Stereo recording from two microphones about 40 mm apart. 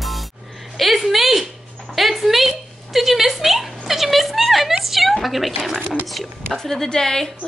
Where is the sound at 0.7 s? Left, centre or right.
Centre.